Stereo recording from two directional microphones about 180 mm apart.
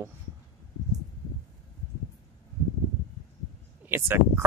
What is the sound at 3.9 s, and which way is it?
Speech, 10° right (ahead or behind).